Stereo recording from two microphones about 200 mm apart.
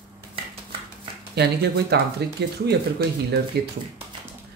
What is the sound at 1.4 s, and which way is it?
Speech, 55° right (ahead or behind).